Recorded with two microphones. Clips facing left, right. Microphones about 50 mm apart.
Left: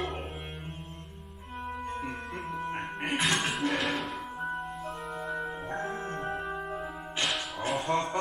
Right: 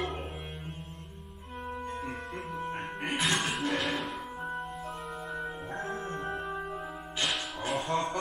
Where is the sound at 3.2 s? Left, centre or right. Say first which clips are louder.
Left 1 dB; centre.